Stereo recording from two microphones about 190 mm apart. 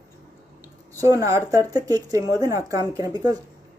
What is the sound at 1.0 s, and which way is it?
Speech, 15° right (ahead or behind).